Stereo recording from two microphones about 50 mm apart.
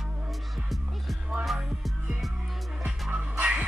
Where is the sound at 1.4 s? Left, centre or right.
Centre.